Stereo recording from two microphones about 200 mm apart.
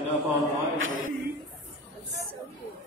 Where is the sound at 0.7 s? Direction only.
80° right.